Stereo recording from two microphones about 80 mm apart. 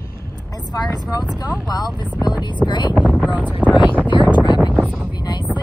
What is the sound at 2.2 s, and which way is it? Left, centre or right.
Vehicle, left.